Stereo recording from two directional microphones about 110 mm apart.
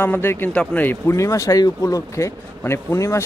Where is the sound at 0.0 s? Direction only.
20° left (ahead or behind).